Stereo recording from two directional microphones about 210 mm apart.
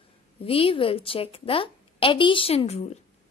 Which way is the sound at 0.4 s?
25° left (ahead or behind).